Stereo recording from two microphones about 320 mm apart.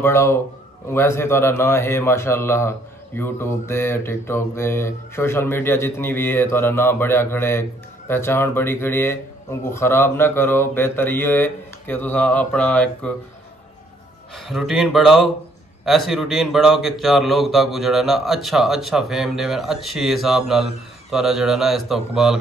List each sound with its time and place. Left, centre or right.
0.0 s speech: centre
14.3 s speech: centre